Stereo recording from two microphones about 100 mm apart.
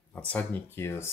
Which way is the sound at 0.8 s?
25° left (ahead or behind).